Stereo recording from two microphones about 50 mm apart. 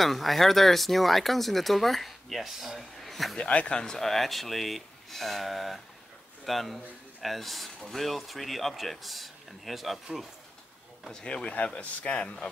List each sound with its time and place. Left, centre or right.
0.0 s speech: centre
3.3 s speech: left; by 9.9 s centre
11.2 s speech: left